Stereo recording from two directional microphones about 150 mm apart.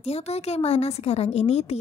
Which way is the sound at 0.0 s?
45° left (ahead or behind).